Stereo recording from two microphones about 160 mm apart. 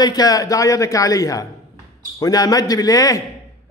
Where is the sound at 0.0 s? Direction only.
25° left (ahead or behind).